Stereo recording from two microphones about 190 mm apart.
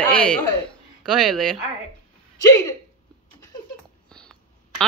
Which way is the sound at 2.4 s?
20° left (ahead or behind).